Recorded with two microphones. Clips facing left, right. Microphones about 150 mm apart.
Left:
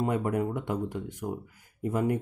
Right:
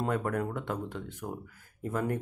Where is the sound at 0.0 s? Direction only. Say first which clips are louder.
Left 3 dB; 15° left (ahead or behind).